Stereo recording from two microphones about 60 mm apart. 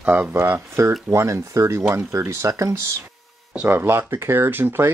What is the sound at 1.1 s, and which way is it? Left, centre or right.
Speech, right.